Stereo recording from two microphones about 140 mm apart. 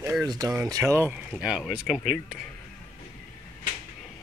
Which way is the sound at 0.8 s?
15° right (ahead or behind).